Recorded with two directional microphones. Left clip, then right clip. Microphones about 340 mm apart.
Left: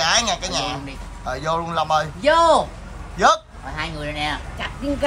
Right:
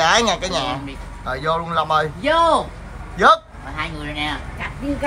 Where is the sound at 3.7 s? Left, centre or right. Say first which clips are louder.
Right 1 dB; left.